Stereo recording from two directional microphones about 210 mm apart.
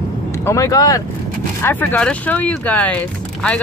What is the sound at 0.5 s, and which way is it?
Speech, 15° left (ahead or behind).